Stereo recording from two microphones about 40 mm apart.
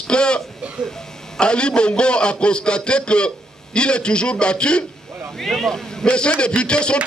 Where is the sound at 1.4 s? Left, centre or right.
Left.